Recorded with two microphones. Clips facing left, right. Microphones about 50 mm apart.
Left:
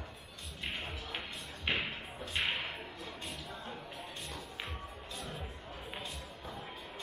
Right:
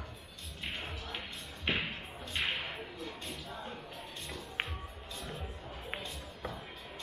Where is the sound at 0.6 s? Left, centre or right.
Centre.